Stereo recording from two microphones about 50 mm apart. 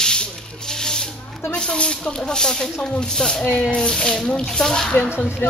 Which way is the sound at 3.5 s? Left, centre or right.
Left.